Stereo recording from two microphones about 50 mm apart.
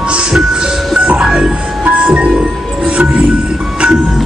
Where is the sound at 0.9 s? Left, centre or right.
Centre.